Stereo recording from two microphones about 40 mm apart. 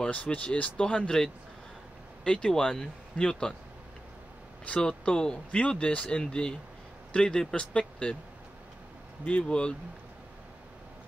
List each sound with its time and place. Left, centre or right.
0.0 s speech: left
2.2 s speech: left
4.6 s speech: left
9.2 s speech: left